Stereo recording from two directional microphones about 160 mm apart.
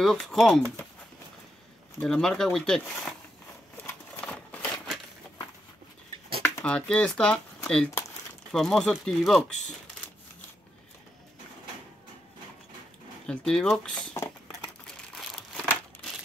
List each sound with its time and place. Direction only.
0.0 s speech: centre (ahead or behind)
2.0 s speech: 5° left (ahead or behind)
3.7 s a sound: 10° left (ahead or behind)
6.4 s speech: 10° left (ahead or behind)
13.3 s speech: 5° left (ahead or behind)
15.1 s crumpling: 5° left (ahead or behind)